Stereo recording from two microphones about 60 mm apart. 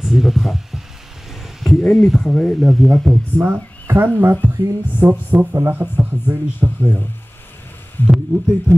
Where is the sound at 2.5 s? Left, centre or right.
Centre.